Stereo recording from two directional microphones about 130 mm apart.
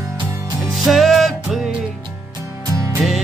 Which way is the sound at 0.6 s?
Centre (ahead or behind).